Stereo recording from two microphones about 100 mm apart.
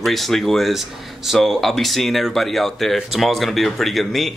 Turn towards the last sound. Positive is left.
turn(degrees=0)  # may be behind; listen again after turning